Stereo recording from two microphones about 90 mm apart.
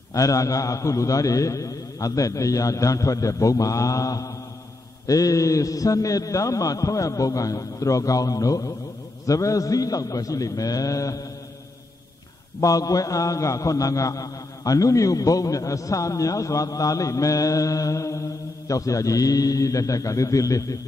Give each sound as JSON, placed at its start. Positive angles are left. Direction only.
{"t": 0.1, "sound": "a man's voice", "side_deg": 40}
{"t": 12.5, "sound": "a man's voice", "side_deg": 40}